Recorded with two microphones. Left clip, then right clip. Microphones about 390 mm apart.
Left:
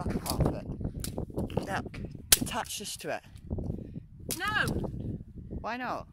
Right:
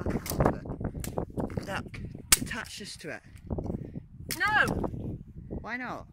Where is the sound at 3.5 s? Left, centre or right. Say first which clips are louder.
Right 4 dB; right.